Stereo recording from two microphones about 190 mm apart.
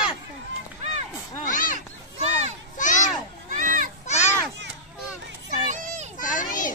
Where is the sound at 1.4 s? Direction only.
45° left (ahead or behind).